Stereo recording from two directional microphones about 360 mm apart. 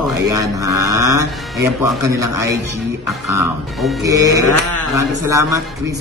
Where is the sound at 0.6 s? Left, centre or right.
Right.